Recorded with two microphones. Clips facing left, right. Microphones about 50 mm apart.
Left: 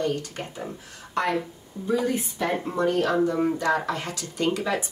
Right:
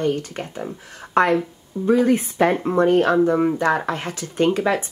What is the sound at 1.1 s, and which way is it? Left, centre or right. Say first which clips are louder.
A woman's voice: right 8 dB; right.